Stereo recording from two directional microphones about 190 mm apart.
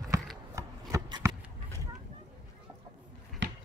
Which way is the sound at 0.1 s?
15° right (ahead or behind).